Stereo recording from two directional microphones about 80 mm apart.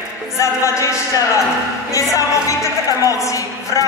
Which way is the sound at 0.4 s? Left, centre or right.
Left.